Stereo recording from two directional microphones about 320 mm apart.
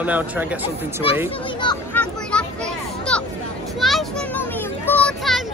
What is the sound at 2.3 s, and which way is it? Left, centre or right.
Children playing, centre.